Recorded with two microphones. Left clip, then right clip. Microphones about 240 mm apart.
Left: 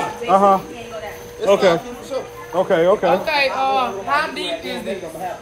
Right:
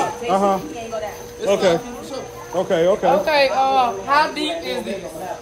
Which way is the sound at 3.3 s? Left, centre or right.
Right.